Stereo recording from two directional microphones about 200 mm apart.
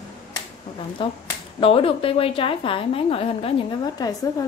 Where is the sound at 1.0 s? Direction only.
25° left (ahead or behind).